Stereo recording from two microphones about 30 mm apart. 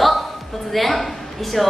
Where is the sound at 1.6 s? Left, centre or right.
Centre.